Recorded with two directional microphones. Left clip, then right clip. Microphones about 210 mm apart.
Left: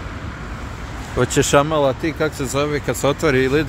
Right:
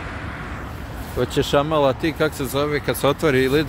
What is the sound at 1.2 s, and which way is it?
Speech, 15° left (ahead or behind).